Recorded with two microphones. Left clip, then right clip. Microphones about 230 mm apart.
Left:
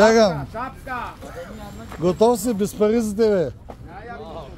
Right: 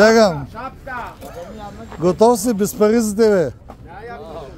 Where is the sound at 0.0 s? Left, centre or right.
Centre.